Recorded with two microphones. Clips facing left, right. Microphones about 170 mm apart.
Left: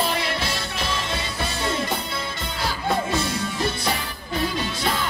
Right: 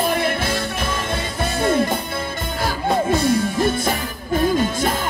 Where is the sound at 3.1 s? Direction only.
50° right (ahead or behind).